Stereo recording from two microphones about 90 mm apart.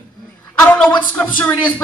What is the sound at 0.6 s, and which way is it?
Speech, 15° left (ahead or behind).